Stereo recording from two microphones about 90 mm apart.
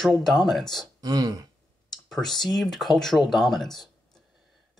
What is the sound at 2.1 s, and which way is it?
Speech, 5° left (ahead or behind).